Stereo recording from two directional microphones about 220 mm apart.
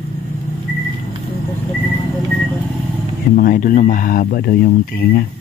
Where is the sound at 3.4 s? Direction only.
40° left (ahead or behind).